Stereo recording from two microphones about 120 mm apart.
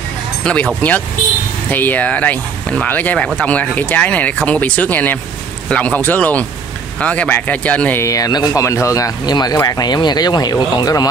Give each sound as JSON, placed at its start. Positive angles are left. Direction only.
{"t": 0.4, "sound": "speech", "side_deg": 10}
{"t": 1.7, "sound": "speech", "side_deg": 15}
{"t": 8.0, "sound": "speech", "side_deg": 30}